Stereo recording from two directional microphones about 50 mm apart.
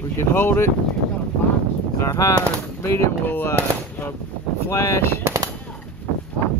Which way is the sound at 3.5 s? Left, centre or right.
Left.